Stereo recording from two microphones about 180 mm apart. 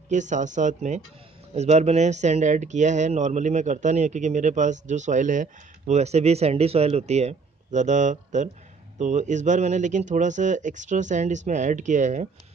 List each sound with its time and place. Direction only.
0.1 s speech: 45° right (ahead or behind)